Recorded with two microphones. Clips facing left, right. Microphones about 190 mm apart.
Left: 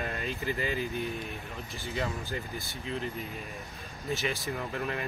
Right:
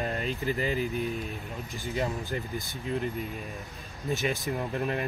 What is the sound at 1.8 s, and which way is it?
Speech, 15° right (ahead or behind).